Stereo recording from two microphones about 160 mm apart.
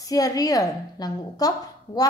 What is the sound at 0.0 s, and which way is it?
A woman's voice, 25° left (ahead or behind).